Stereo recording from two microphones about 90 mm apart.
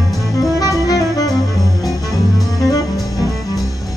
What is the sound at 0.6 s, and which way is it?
Music, 40° left (ahead or behind).